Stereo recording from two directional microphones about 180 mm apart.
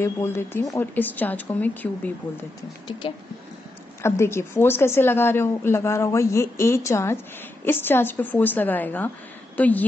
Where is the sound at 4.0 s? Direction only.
15° left (ahead or behind).